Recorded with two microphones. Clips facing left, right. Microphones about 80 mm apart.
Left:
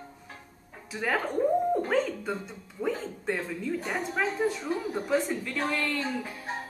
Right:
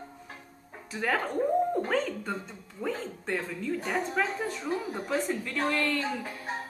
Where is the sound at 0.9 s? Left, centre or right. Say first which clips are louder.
Even; centre.